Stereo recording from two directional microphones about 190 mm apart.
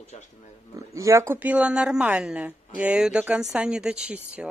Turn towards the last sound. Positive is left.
turn(degrees=-5)  # may be behind; listen again after turning